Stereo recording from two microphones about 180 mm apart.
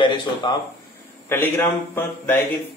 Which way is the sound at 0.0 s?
25° left (ahead or behind).